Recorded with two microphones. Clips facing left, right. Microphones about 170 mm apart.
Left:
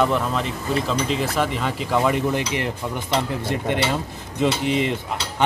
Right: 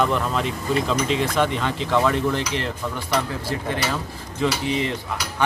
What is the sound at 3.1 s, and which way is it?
Speech, 25° left (ahead or behind).